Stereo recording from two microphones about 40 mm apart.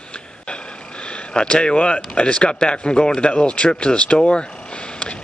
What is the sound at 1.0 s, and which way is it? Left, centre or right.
A man's voice, left.